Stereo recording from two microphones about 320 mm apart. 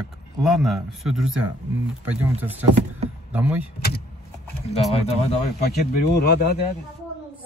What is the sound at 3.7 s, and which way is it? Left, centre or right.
Speech, left.